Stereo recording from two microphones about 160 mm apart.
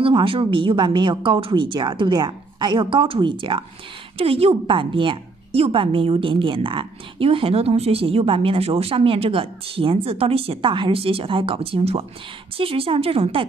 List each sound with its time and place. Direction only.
0.0 s a woman's voice: 35° right (ahead or behind)